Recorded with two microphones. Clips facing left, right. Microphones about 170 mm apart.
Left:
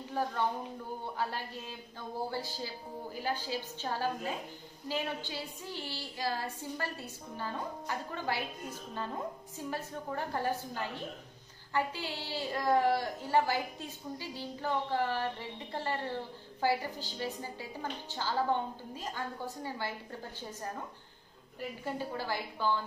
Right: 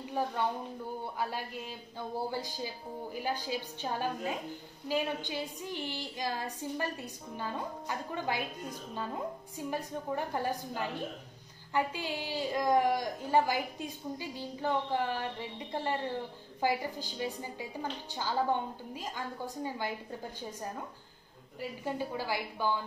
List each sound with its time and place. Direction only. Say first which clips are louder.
1.1 s a woman's voice: left 1 dB; 15° right (ahead or behind)
21.8 s a woman's voice: right 2 dB; 15° right (ahead or behind)